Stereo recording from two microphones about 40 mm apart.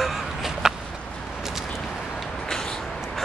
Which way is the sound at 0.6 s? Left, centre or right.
Centre.